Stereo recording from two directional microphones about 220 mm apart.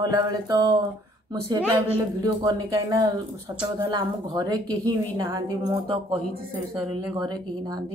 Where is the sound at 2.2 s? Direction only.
20° right (ahead or behind).